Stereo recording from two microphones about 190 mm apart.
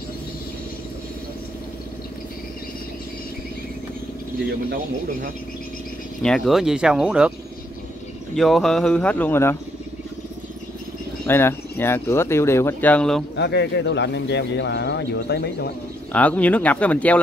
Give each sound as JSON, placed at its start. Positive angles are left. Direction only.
{"t": 6.2, "sound": "speech", "side_deg": 0}
{"t": 8.4, "sound": "speech", "side_deg": 0}
{"t": 11.2, "sound": "speech", "side_deg": 10}
{"t": 13.4, "sound": "speech", "side_deg": 65}
{"t": 16.1, "sound": "speech", "side_deg": 5}